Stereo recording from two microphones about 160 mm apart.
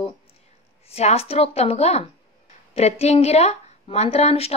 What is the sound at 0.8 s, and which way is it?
Speech, 40° left (ahead or behind).